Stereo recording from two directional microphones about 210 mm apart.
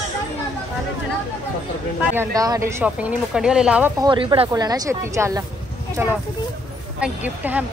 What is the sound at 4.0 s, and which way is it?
Speech, 20° right (ahead or behind).